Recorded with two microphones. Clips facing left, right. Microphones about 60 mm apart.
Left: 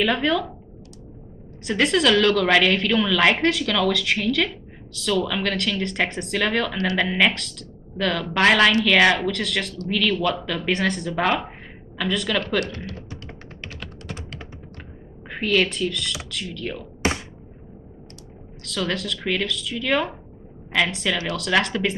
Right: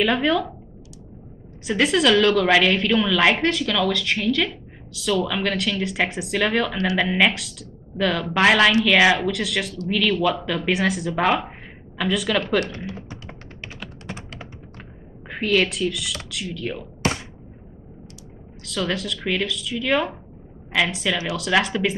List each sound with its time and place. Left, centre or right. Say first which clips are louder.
0.0 s a woman's voice: right 1 dB; centre
1.6 s a woman's voice: right 1 dB; centre
13.3 s tap: even; centre
15.2 s a woman's voice: right 1 dB; centre
18.6 s a woman's voice: right 1 dB; centre